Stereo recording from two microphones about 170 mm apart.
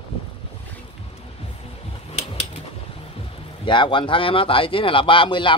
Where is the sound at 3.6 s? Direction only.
30° left (ahead or behind).